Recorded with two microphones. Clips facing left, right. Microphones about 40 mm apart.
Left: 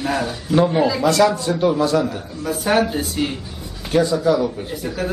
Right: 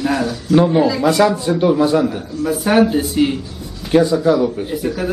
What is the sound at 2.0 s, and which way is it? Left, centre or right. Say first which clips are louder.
A woman's voice: right 5 dB; centre.